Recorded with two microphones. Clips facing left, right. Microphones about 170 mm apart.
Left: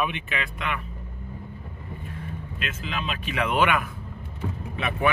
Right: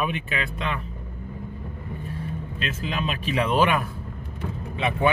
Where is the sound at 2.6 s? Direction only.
35° right (ahead or behind).